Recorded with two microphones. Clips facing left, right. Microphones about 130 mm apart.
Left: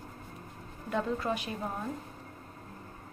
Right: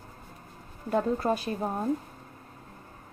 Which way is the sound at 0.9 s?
40° right (ahead or behind).